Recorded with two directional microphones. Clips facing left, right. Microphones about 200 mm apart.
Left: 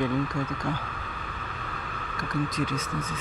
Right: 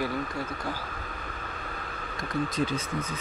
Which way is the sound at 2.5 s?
30° right (ahead or behind).